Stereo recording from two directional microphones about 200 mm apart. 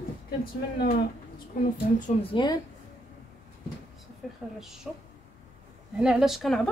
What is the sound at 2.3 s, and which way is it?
Speech, 20° left (ahead or behind).